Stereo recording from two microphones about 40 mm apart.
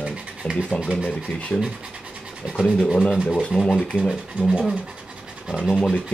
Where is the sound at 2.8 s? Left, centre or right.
Centre.